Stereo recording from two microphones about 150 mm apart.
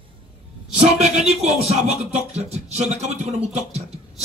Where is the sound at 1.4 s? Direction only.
45° right (ahead or behind).